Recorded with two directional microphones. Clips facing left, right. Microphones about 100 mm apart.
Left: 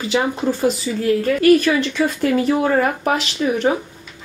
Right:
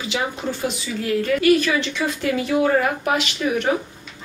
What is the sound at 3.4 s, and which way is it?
Speech, 25° left (ahead or behind).